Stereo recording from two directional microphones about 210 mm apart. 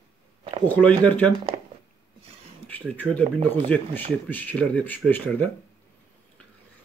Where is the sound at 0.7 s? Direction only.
5° left (ahead or behind).